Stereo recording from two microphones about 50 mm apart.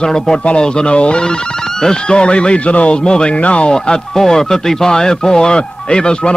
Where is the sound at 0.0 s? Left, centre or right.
Centre.